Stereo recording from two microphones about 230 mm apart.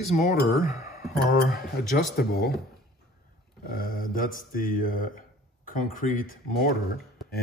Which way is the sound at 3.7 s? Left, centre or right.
Left.